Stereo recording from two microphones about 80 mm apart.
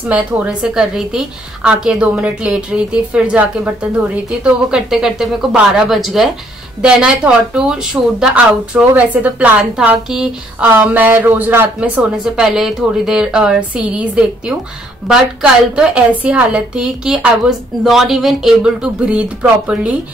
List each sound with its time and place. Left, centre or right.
0.1 s a woman's voice: centre
8.7 s a woman's voice: centre
10.6 s speech: right
12.2 s a woman's voice: centre
15.7 s a woman's voice: centre